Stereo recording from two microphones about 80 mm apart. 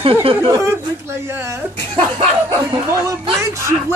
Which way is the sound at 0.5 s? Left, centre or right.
Right.